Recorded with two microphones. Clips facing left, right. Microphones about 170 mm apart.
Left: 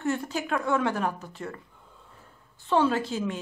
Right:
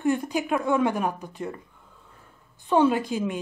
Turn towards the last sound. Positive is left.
turn(degrees=-15)  # may be behind; listen again after turning